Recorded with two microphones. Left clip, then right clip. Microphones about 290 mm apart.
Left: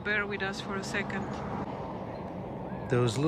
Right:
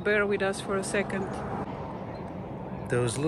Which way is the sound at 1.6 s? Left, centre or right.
Left.